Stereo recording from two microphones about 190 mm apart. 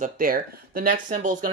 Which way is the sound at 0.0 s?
50° right (ahead or behind).